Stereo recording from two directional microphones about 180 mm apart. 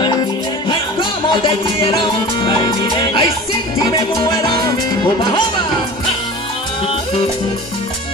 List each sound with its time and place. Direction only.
0.7 s music: 30° left (ahead or behind)